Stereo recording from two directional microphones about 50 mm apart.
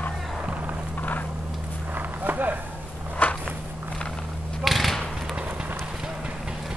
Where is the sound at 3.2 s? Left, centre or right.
Left.